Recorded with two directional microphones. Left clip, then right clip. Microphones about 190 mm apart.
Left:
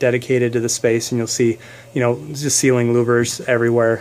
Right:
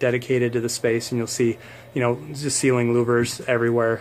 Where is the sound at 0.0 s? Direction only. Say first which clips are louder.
Left 4 dB; 35° left (ahead or behind).